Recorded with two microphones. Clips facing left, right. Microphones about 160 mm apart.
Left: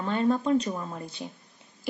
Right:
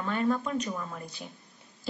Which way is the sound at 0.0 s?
25° left (ahead or behind).